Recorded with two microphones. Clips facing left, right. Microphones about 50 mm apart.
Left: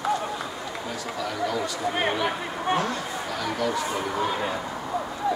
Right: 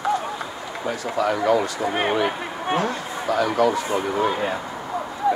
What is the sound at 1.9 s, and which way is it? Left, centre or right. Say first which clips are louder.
Speech: right 3 dB; centre.